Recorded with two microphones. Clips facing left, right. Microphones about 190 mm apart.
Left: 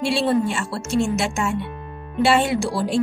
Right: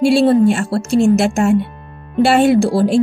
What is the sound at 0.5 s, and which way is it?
A woman's voice, 55° right (ahead or behind).